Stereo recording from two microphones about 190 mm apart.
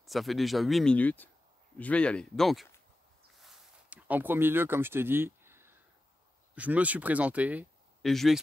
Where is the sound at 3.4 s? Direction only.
5° right (ahead or behind).